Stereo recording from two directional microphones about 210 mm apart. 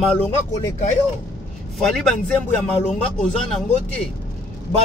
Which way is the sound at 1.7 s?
Centre (ahead or behind).